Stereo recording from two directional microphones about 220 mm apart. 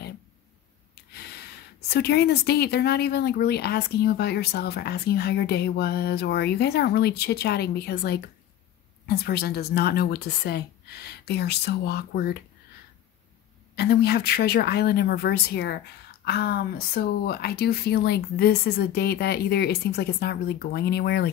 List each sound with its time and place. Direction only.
1.1 s a woman's voice: 45° left (ahead or behind)
13.7 s a woman's voice: 45° left (ahead or behind)